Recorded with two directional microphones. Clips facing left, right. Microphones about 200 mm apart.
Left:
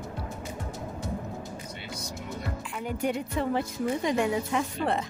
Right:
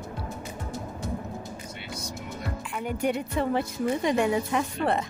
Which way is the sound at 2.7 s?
60° right (ahead or behind).